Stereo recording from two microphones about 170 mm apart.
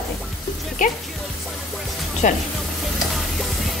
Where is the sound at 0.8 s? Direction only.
50° left (ahead or behind).